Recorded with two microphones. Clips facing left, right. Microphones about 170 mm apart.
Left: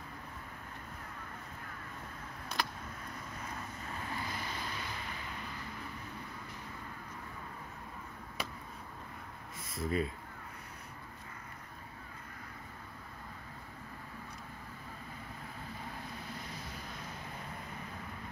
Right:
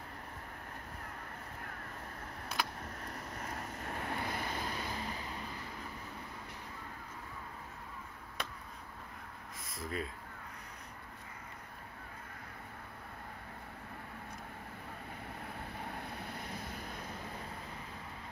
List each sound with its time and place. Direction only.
3.1 s vehicle: 70° right (ahead or behind)
3.7 s vehicle: 60° right (ahead or behind); by 5.3 s 35° right (ahead or behind)
8.4 s a sound: 5° left (ahead or behind)
9.8 s speech: 5° left (ahead or behind)
15.7 s vehicle: 60° right (ahead or behind)